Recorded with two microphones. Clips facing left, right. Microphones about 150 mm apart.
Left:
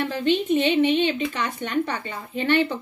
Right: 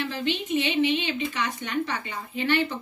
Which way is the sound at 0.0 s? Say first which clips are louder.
Left 6 dB; 50° left (ahead or behind).